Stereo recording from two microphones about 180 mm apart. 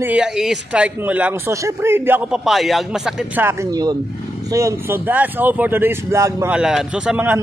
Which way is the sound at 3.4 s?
20° right (ahead or behind).